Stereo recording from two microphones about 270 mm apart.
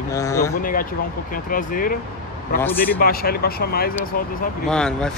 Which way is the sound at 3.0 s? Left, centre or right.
Left.